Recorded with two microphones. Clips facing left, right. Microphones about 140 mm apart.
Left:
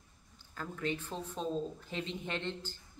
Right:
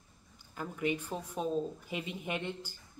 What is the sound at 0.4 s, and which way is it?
Speech, 15° right (ahead or behind).